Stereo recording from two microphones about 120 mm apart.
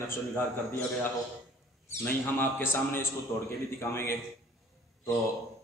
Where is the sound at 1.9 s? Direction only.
15° left (ahead or behind).